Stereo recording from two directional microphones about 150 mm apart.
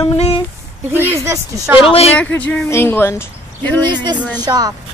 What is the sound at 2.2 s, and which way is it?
Speech, 15° left (ahead or behind).